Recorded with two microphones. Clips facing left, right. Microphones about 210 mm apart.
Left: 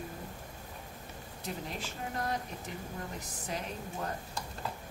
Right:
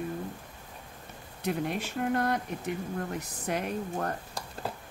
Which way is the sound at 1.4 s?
65° right (ahead or behind).